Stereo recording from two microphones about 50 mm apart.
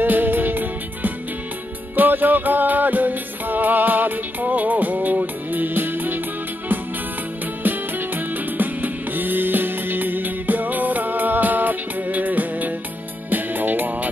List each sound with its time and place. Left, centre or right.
0.0 s music: right
7.6 s music: right